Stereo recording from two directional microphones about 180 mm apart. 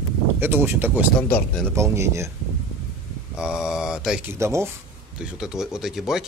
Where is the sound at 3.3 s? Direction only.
5° right (ahead or behind).